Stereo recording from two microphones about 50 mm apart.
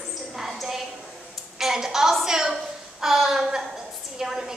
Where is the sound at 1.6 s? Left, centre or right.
Centre.